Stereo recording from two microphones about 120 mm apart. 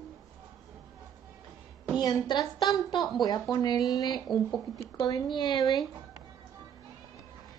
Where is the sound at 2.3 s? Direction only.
35° left (ahead or behind).